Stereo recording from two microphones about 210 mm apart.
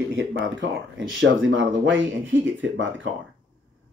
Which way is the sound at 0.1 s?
60° right (ahead or behind).